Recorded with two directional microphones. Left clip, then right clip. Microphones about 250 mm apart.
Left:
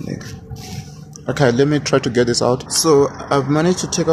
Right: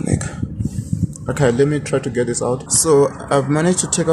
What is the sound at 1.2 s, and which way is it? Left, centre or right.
Speech, centre.